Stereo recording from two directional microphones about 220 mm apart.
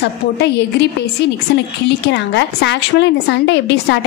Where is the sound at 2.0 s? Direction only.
50° left (ahead or behind).